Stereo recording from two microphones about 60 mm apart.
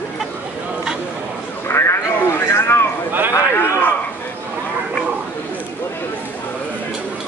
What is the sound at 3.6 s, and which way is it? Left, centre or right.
Speech, left.